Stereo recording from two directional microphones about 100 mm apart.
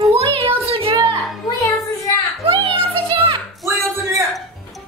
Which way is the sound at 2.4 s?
70° right (ahead or behind).